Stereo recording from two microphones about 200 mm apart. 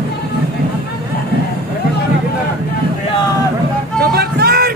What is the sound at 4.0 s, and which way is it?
Music, 50° right (ahead or behind).